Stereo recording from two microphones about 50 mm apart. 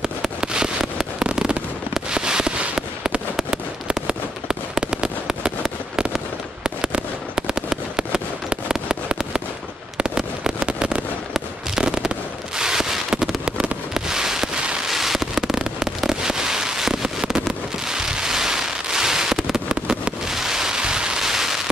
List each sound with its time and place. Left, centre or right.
0.0 s fireworks: centre
20.2 s rain: centre